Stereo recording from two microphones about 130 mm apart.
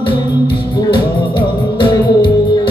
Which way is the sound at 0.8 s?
35° left (ahead or behind).